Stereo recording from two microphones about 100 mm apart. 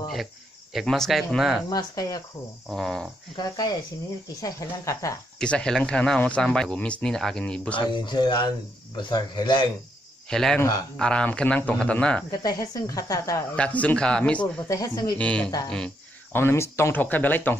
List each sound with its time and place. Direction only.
0.7 s speech: 5° left (ahead or behind)
1.7 s speech: 40° left (ahead or behind)
2.7 s speech: 5° left (ahead or behind)
3.3 s speech: 45° left (ahead or behind)
4.4 s speech: 30° left (ahead or behind)
5.4 s speech: 10° left (ahead or behind)
7.9 s speech: 50° left (ahead or behind)
10.3 s speech: 5° left (ahead or behind)
12.3 s speech: 40° left (ahead or behind)
13.6 s speech: 15° left (ahead or behind)
14.7 s speech: 35° left (ahead or behind)
15.1 s speech: 10° left (ahead or behind)
16.3 s speech: 25° left (ahead or behind)